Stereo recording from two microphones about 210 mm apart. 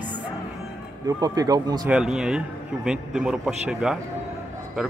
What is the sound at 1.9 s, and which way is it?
A man's voice, centre (ahead or behind).